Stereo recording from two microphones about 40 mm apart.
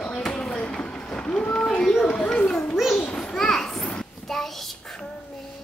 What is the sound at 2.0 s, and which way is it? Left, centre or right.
Children playing, left.